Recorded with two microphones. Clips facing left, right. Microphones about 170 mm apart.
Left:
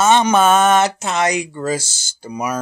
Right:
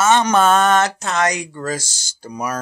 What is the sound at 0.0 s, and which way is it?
Speech, 15° left (ahead or behind).